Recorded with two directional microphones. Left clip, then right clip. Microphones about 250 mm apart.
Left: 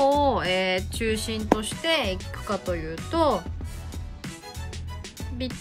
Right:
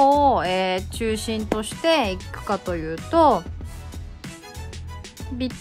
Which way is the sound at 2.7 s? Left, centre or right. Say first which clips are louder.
Right 5 dB; centre.